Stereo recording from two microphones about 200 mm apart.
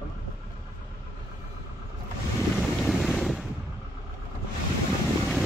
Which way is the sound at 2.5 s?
Centre (ahead or behind).